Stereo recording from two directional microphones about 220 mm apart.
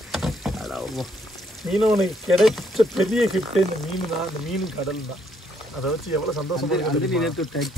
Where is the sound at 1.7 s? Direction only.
5° right (ahead or behind).